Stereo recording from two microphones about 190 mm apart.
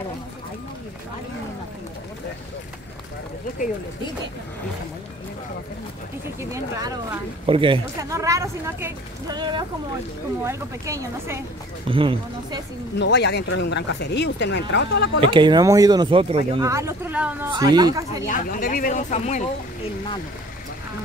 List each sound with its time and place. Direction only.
6.5 s speech: 20° right (ahead or behind)
8.0 s a woman's voice: 15° right (ahead or behind)
9.4 s a woman's voice: 25° right (ahead or behind)
11.9 s speech: 25° right (ahead or behind)
13.0 s speech: 65° left (ahead or behind)
15.1 s speech: 25° right (ahead or behind)
16.6 s a woman's voice: 15° right (ahead or behind)
17.5 s speech: 20° right (ahead or behind)
18.2 s speech: 45° left (ahead or behind)